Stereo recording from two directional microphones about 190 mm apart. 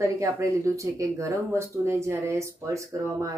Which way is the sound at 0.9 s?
15° right (ahead or behind).